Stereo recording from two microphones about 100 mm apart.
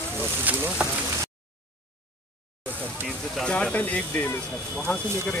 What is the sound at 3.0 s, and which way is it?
Speech, 5° left (ahead or behind).